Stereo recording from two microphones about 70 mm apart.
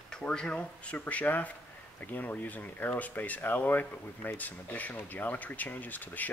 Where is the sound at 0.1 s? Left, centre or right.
Centre.